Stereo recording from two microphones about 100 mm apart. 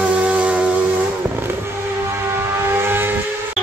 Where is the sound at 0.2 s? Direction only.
15° right (ahead or behind).